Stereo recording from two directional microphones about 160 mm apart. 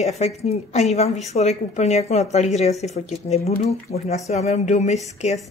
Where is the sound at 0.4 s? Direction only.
40° left (ahead or behind).